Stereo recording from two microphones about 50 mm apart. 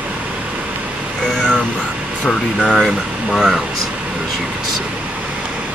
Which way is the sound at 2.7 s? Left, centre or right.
Centre.